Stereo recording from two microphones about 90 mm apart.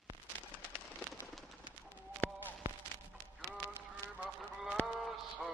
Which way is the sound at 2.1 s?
20° left (ahead or behind).